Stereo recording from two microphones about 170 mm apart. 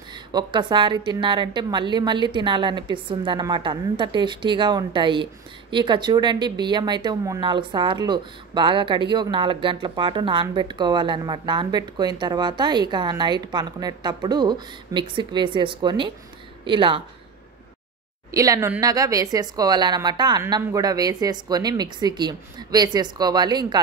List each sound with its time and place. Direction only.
0.1 s a woman's voice: 25° right (ahead or behind)
18.3 s a woman's voice: 20° right (ahead or behind)